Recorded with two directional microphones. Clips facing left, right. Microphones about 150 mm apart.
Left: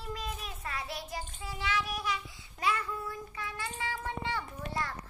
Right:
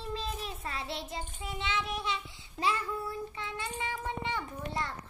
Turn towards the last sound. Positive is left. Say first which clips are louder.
# right 1 dB
turn(degrees=-25)  # may be behind; listen again after turning